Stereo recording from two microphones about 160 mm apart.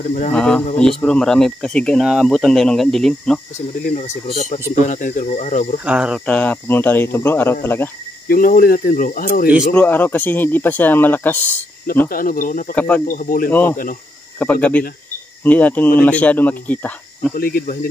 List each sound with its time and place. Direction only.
0.3 s speech: 5° left (ahead or behind)
4.3 s speech: 45° left (ahead or behind)
5.9 s speech: 5° right (ahead or behind)
6.2 s speech: 10° left (ahead or behind)
8.3 s speech: 65° left (ahead or behind)
9.8 s speech: 10° left (ahead or behind)
12.1 s speech: 60° left (ahead or behind)
12.7 s speech: 10° left (ahead or behind)
13.0 s speech: 55° left (ahead or behind)
13.5 s speech: 10° left (ahead or behind)
17.4 s speech: 70° left (ahead or behind)